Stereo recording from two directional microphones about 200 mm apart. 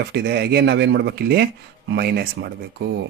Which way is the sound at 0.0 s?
55° right (ahead or behind).